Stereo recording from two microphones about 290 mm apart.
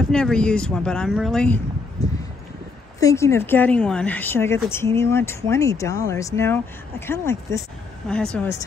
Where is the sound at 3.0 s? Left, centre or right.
Centre.